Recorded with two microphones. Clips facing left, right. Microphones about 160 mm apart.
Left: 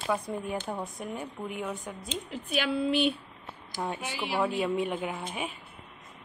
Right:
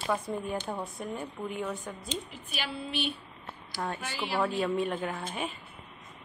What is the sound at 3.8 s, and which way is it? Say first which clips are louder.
A woman's voice: left 1 dB; 15° left (ahead or behind).